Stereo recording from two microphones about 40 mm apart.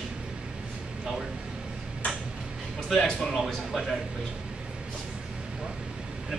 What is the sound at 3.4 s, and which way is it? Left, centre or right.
Speech, centre.